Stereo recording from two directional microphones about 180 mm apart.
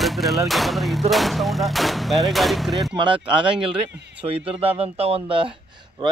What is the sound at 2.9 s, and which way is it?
Speech, 25° right (ahead or behind).